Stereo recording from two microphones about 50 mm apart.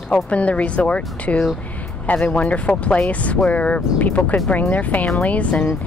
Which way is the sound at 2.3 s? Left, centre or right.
Left.